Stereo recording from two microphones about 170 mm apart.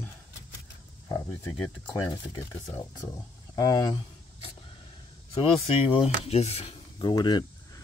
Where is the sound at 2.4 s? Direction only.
15° left (ahead or behind).